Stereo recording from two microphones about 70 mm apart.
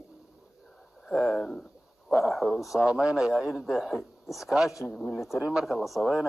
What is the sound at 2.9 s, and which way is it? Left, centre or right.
A man's voice, centre.